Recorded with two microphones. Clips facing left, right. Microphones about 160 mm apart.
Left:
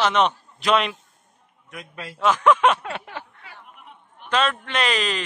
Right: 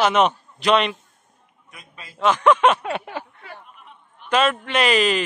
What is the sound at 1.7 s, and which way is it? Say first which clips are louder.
Speech: left 8 dB; 75° left (ahead or behind).